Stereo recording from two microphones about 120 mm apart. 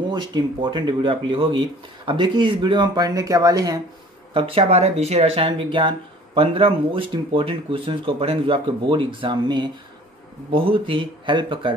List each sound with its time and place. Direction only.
0.1 s speech: 35° right (ahead or behind)
4.3 s speech: 50° right (ahead or behind)